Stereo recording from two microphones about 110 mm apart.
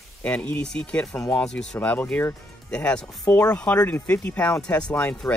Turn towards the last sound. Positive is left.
turn(degrees=10)  # may be behind; listen again after turning